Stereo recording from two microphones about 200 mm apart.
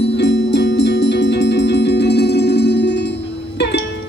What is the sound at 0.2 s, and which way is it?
Music, 60° left (ahead or behind).